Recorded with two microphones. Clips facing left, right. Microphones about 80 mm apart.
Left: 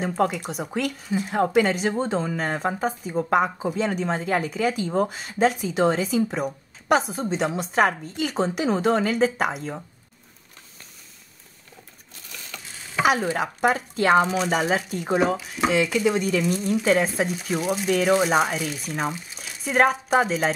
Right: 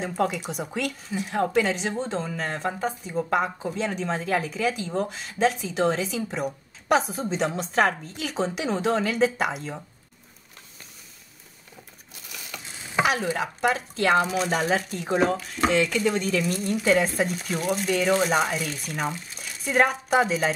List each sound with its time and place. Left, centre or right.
0.4 s speech: centre
12.3 s crushing: centre
13.0 s a sound: centre
13.4 s speech: centre
14.2 s speech: centre